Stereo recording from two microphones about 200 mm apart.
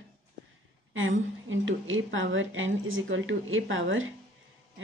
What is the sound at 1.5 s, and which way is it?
A woman's voice, 75° right (ahead or behind).